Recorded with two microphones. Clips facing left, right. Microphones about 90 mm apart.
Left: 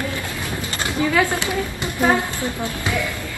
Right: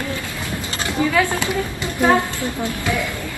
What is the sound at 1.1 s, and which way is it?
A woman's voice, 20° left (ahead or behind).